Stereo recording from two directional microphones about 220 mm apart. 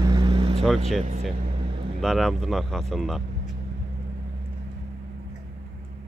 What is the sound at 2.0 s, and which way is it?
Speech, centre (ahead or behind).